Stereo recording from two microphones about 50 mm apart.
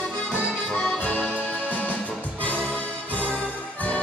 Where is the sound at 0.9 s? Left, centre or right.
Left.